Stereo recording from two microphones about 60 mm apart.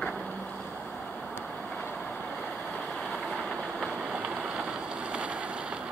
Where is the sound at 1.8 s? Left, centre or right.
Left.